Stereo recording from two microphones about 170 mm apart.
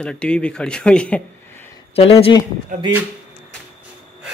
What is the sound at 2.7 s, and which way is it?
Speech, 50° right (ahead or behind).